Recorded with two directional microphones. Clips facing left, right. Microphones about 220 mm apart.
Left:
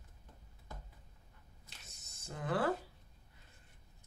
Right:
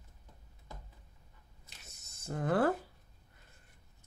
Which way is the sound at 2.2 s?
50° right (ahead or behind).